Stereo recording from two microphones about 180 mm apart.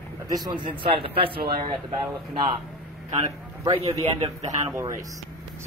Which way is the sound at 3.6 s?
35° right (ahead or behind).